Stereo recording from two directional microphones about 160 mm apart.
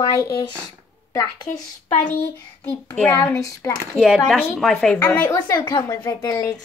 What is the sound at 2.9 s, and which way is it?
A woman's voice, 5° left (ahead or behind).